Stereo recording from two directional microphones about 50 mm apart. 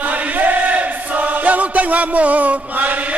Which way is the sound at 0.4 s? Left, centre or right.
Right.